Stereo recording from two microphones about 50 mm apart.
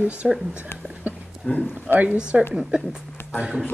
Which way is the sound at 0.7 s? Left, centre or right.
Left.